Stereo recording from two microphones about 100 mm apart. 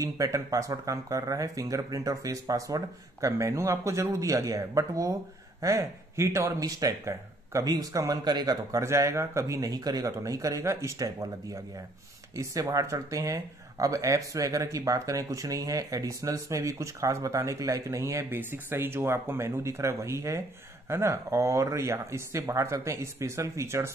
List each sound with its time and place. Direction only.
0.0 s speech: 35° right (ahead or behind)